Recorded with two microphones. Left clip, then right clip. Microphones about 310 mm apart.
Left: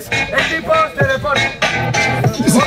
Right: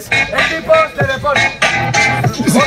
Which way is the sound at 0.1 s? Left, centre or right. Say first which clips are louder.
Right 3 dB; centre.